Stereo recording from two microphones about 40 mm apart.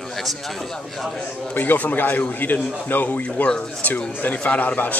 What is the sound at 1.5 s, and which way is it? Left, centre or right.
Speech, left.